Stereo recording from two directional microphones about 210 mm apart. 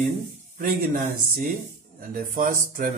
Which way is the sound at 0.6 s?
45° right (ahead or behind).